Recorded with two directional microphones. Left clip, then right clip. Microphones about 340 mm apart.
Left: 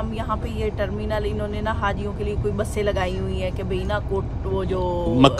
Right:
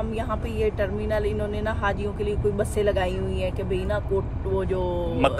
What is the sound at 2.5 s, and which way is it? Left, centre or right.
Speech, centre.